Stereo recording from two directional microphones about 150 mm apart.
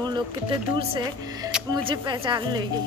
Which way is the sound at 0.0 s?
30° right (ahead or behind).